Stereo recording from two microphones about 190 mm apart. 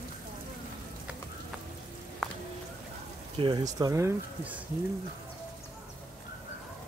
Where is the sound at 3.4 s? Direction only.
20° right (ahead or behind).